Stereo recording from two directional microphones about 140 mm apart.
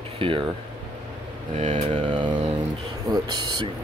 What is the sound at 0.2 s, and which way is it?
Speech, 40° right (ahead or behind).